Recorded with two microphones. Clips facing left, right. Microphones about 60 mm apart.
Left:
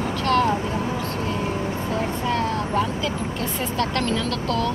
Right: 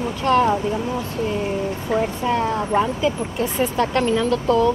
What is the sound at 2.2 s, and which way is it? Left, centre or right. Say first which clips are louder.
Vehicle: right 3 dB; centre.